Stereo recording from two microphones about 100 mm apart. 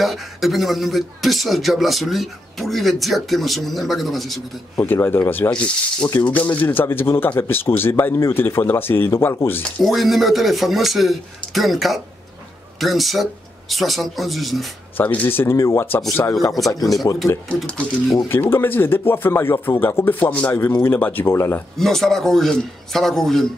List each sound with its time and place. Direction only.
0.0 s speech: centre (ahead or behind)
4.7 s speech: 20° left (ahead or behind)
9.8 s speech: centre (ahead or behind)
15.0 s speech: 20° left (ahead or behind)
17.1 s speech: 40° left (ahead or behind)
18.3 s speech: 20° left (ahead or behind)
21.7 s speech: 5° left (ahead or behind)